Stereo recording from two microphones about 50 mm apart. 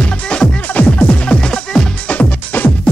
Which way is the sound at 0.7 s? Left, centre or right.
Left.